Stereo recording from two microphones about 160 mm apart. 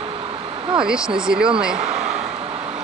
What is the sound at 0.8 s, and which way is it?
Speech, 5° right (ahead or behind).